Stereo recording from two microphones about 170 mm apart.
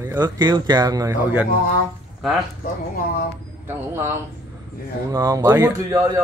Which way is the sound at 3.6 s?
15° right (ahead or behind).